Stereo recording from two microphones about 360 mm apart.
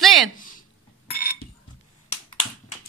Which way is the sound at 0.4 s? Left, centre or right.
Left.